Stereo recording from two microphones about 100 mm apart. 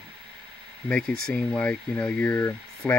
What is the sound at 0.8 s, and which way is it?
Speech, 10° left (ahead or behind).